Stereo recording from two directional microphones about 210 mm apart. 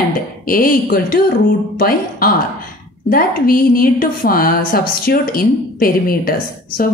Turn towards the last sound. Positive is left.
turn(degrees=45)  # may be behind; listen again after turning